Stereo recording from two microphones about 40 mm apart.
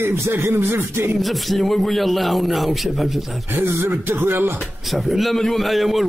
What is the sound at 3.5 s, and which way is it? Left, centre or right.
Speech, right.